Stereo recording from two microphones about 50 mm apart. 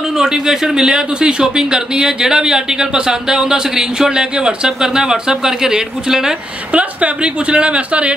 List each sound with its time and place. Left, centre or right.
0.2 s speech: centre
6.7 s a woman's voice: right